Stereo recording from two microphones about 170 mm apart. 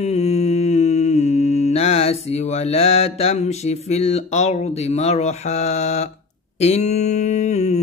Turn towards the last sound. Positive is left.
turn(degrees=40)  # may be behind; listen again after turning